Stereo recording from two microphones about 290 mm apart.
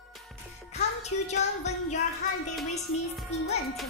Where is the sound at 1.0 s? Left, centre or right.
Left.